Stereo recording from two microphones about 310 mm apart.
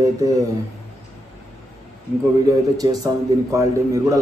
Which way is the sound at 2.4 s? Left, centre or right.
Centre.